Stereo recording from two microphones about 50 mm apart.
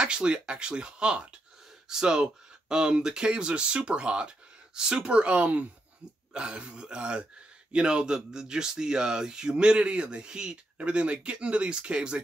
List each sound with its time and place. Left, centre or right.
0.0 s speech: centre